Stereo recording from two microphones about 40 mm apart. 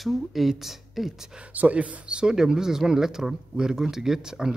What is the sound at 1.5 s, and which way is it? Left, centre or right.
Speech, right.